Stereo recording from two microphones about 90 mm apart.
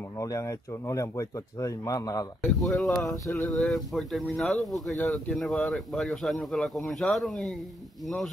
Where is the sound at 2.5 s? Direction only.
Centre (ahead or behind).